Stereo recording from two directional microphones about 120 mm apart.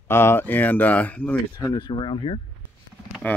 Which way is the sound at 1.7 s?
40° left (ahead or behind).